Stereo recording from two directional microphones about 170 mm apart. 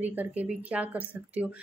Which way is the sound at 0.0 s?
10° right (ahead or behind).